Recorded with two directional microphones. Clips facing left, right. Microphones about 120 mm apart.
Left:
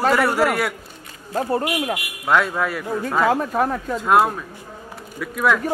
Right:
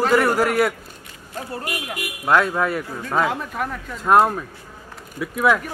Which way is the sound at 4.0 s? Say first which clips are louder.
Right 2 dB; centre (ahead or behind).